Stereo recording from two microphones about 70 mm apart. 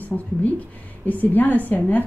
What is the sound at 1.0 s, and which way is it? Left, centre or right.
A woman's voice, left.